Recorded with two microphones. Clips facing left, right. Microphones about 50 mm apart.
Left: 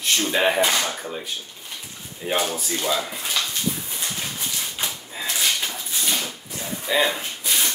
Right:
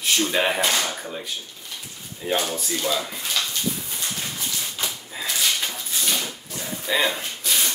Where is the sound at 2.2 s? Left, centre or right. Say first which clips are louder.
Left 1 dB; centre.